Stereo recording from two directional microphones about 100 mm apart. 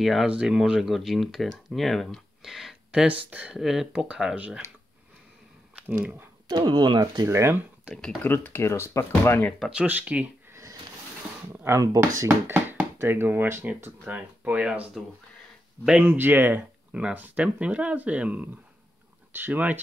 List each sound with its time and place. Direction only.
0.0 s speech: centre (ahead or behind)
3.5 s speech: 5° right (ahead or behind)
6.4 s speech: 50° right (ahead or behind)
7.2 s speech: 30° right (ahead or behind)
7.9 s speech: 5° left (ahead or behind)
8.2 s speech: 20° left (ahead or behind)
9.7 s speech: 15° right (ahead or behind)
10.5 s a sound: 30° right (ahead or behind)
11.5 s speech: 25° right (ahead or behind)
11.8 s speech: 35° right (ahead or behind); by 19.8 s 20° right (ahead or behind)